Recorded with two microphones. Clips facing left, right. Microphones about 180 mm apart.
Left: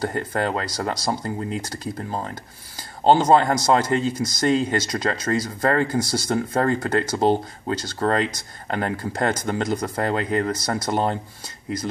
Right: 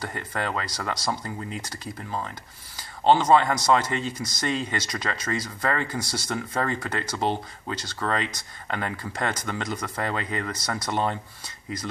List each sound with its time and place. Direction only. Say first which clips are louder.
0.0 s a man's voice: left 7 dB; 40° left (ahead or behind)
3.0 s a man's voice: left 3 dB; 45° left (ahead or behind)